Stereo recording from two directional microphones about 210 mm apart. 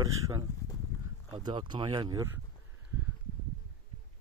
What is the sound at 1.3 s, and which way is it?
Speech, 20° right (ahead or behind).